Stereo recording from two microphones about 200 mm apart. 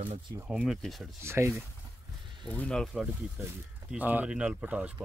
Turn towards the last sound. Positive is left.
turn(degrees=-10)  # may be behind; listen again after turning